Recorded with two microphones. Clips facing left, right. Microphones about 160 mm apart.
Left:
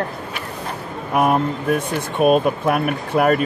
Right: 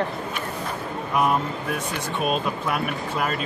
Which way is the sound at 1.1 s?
55° left (ahead or behind).